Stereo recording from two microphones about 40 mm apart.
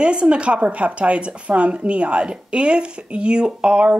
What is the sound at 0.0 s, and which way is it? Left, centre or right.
Speech, right.